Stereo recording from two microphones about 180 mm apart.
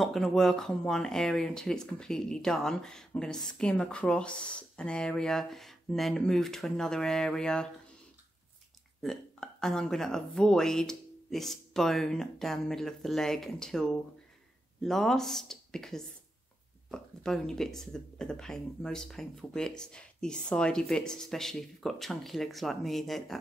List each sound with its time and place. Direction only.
0.0 s speech: centre (ahead or behind)
9.0 s speech: centre (ahead or behind)